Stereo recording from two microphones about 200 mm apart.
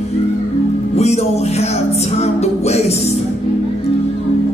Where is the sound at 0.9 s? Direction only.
30° left (ahead or behind).